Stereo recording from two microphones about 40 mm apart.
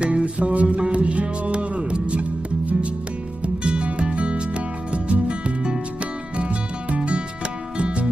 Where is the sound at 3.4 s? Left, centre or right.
Right.